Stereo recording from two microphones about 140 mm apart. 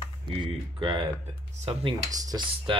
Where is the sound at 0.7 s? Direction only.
30° right (ahead or behind).